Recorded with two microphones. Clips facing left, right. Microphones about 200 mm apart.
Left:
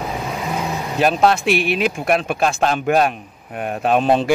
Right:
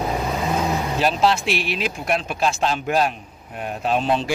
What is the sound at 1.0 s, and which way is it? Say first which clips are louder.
Speech: left 5 dB; 55° left (ahead or behind).